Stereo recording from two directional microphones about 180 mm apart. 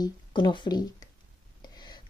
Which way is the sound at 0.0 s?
25° left (ahead or behind).